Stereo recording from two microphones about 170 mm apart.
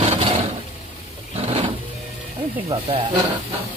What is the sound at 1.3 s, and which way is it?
Vehicle, 35° right (ahead or behind).